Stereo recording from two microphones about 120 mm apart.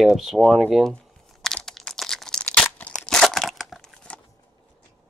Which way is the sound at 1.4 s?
5° left (ahead or behind).